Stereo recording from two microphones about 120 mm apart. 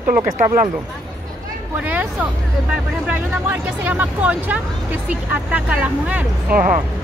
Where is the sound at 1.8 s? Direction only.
10° right (ahead or behind).